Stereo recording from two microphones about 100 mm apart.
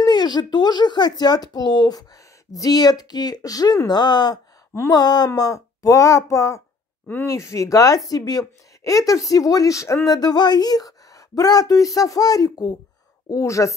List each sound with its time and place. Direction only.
0.0 s a woman's voice: 45° left (ahead or behind)